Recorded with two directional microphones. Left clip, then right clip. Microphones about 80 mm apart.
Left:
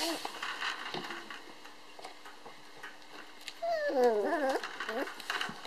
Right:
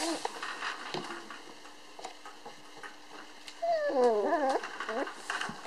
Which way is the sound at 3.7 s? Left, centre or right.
Left.